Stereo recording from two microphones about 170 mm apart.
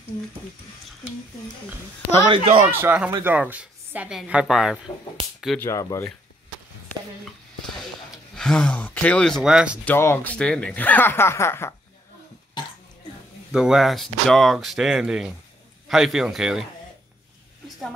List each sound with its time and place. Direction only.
2.2 s speech: 30° right (ahead or behind)
2.8 s a woman's voice: 10° right (ahead or behind)
5.2 s speech: 30° right (ahead or behind)
5.6 s speech: 15° left (ahead or behind)
7.6 s speech: centre (ahead or behind)
9.8 s speech: 15° left (ahead or behind)
13.5 s speech: 5° right (ahead or behind)